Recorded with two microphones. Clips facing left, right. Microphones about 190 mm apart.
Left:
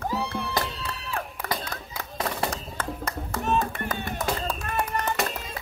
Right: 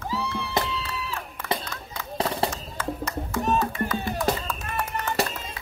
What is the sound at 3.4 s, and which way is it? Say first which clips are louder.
Music: right 1 dB; 40° right (ahead or behind).